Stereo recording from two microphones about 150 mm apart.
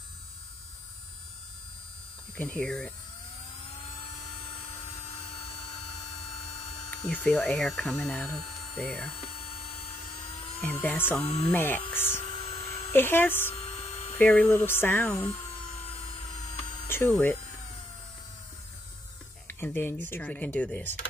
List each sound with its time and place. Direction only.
2.3 s speech: 10° left (ahead or behind)
7.1 s speech: 10° left (ahead or behind)
9.2 s hum: 40° left (ahead or behind)
10.6 s speech: 10° left (ahead or behind)
11.2 s speech: 35° left (ahead or behind)
11.5 s speech: 15° left (ahead or behind)
12.3 s a sound: 45° left (ahead or behind)
12.5 s speech: 15° left (ahead or behind)
13.6 s a sound: 45° left (ahead or behind)
14.1 s speech: 10° left (ahead or behind)
15.9 s music: 45° left (ahead or behind)
16.8 s a sound: 15° left (ahead or behind)
17.1 s speech: 10° left (ahead or behind)
19.4 s speech: 15° left (ahead or behind)